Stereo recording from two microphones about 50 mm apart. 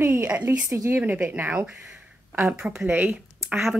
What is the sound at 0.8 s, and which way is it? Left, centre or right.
Speech, right.